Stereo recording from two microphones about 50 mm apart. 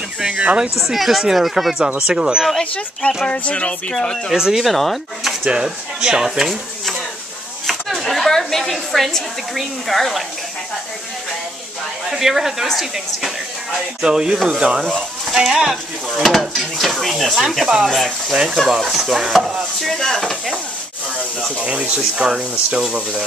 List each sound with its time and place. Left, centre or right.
0.3 s speech: right
0.7 s speech: centre
2.0 s speech: centre
3.0 s speech: centre
3.3 s speech: left
3.9 s speech: centre
4.3 s speech: centre
5.4 s speech: centre
8.0 s a woman's voice: centre
12.1 s speech: centre
14.8 s speech: centre
18.3 s speech: centre
19.8 s speech: centre
22.1 s speech: centre